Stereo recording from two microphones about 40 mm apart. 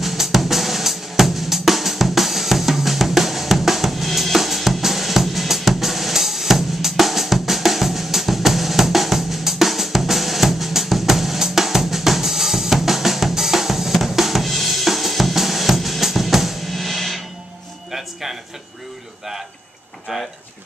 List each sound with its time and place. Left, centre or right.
0.0 s drum kit: centre
17.9 s music: centre